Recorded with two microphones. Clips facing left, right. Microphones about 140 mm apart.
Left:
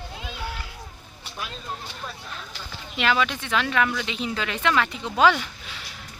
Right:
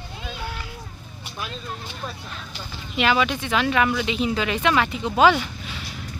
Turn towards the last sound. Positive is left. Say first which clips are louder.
# right 3 dB
turn(degrees=-10)  # may be behind; listen again after turning